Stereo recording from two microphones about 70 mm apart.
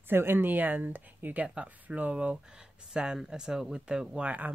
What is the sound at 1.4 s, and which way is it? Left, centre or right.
Speech, centre.